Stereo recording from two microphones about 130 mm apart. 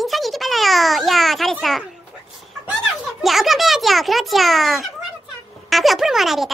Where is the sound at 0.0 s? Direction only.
Centre (ahead or behind).